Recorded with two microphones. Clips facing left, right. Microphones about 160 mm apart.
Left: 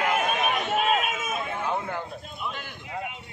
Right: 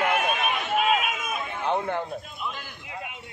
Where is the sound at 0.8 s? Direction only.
35° left (ahead or behind).